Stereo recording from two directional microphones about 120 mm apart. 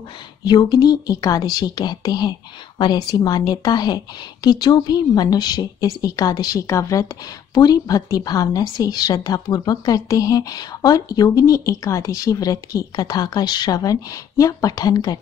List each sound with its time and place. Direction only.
0.5 s a woman's voice: 35° left (ahead or behind)